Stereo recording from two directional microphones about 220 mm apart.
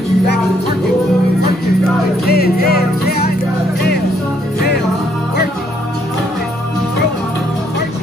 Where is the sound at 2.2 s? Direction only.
45° left (ahead or behind).